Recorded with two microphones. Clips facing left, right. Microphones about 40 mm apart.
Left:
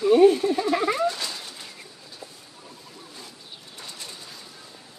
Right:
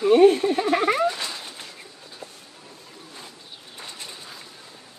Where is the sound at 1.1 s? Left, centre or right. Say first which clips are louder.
Right 1 dB; right.